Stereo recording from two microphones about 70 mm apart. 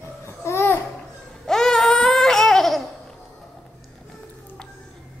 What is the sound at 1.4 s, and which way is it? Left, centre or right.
Laughter, centre.